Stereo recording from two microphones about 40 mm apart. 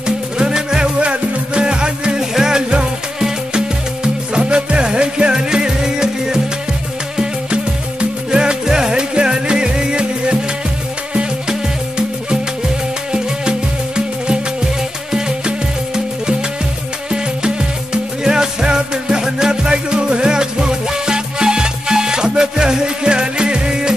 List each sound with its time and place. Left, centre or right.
0.0 s music: centre
2.1 s music: centre
13.1 s music: right
18.2 s music: centre